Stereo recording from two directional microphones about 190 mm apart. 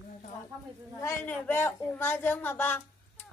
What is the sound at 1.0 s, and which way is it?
A woman's voice, 10° left (ahead or behind).